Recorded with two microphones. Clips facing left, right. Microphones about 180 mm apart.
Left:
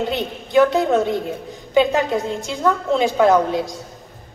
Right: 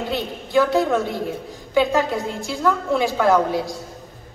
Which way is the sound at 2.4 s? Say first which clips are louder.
Left 1 dB; 20° left (ahead or behind).